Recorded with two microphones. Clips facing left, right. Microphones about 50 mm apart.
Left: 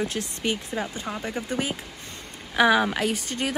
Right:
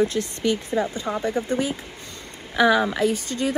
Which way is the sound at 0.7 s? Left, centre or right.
Right.